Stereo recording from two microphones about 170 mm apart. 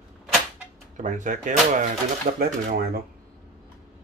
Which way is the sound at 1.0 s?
45° right (ahead or behind).